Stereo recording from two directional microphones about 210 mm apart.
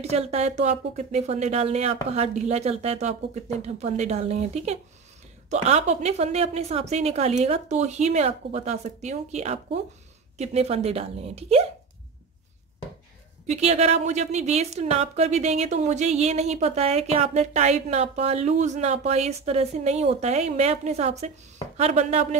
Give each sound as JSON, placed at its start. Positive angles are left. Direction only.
{"t": 0.0, "sound": "a woman's voice", "side_deg": -30}
{"t": 13.5, "sound": "a woman's voice", "side_deg": -30}